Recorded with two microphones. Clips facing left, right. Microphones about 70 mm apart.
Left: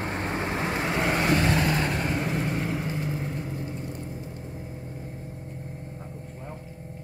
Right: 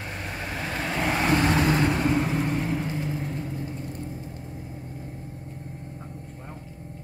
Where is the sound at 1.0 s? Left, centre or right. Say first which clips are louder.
Right 2 dB; centre.